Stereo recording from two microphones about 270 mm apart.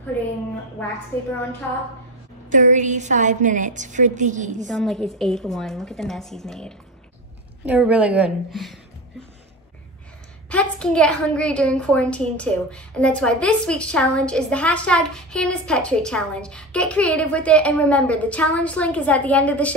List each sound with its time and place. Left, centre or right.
2.5 s a woman's voice: right
4.6 s a woman's voice: centre
10.5 s a woman's voice: centre